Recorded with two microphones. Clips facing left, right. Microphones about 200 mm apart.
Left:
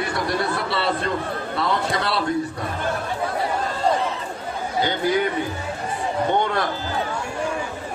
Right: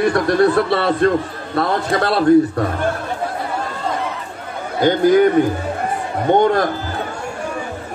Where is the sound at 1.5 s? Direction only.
50° right (ahead or behind).